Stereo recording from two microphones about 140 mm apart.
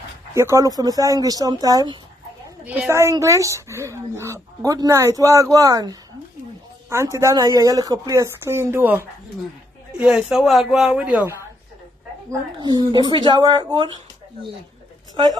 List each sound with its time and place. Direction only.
0.3 s speech: 20° right (ahead or behind)
2.6 s speech: 10° right (ahead or behind)
12.3 s speech: 30° right (ahead or behind)